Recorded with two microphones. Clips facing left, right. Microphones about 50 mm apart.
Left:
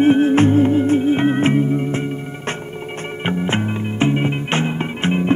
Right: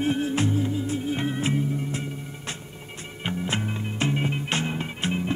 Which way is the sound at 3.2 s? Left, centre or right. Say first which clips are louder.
Left 8 dB; left.